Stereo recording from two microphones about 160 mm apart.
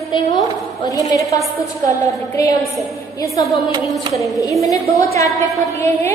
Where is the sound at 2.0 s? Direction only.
20° left (ahead or behind).